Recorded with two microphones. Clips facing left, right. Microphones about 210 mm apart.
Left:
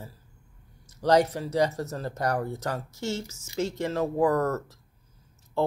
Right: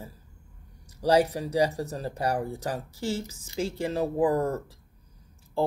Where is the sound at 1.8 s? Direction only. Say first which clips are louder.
Even; 10° right (ahead or behind).